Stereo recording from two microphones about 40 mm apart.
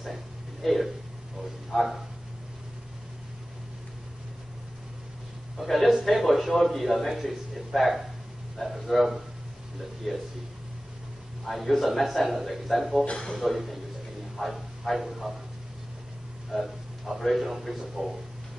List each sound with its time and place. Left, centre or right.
0.6 s a man's voice: centre
5.6 s a man's voice: centre
11.4 s a man's voice: centre
13.0 s speech: left
13.4 s a man's voice: centre
14.3 s a sound: centre
16.4 s a man's voice: centre